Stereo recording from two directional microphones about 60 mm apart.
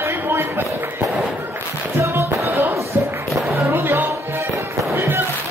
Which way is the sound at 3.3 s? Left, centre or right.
Right.